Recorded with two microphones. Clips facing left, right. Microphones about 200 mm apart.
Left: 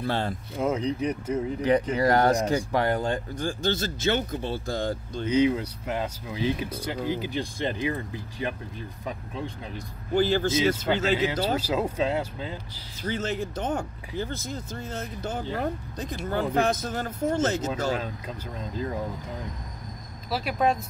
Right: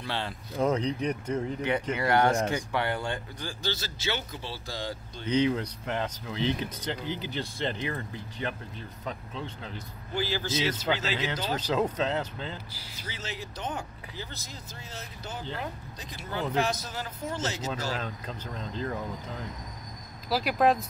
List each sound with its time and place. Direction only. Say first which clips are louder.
0.0 s speech: left 6 dB; 45° left (ahead or behind)
0.6 s speech: even; 5° left (ahead or behind)
1.6 s speech: left 6 dB; 35° left (ahead or behind); by 5.3 s 50° left (ahead or behind)
5.3 s speech: left 3 dB; 10° left (ahead or behind)
10.1 s speech: left 8 dB; 50° left (ahead or behind)
11.4 s speech: left 2 dB; 10° left (ahead or behind)
13.1 s speech: left 11 dB; 50° left (ahead or behind)
17.9 s speech: left 4 dB; 10° left (ahead or behind)
20.2 s speech: right 1 dB; centre (ahead or behind)